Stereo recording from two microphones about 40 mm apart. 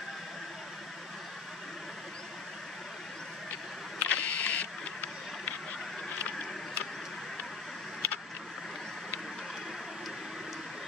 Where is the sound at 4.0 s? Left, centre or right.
Left.